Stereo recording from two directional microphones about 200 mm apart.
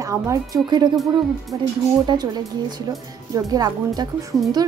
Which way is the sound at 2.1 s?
20° right (ahead or behind).